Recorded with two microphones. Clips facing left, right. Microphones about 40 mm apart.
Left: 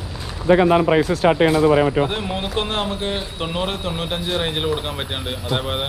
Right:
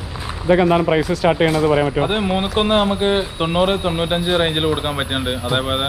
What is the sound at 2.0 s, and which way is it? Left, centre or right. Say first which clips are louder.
Speech: right 5 dB; right.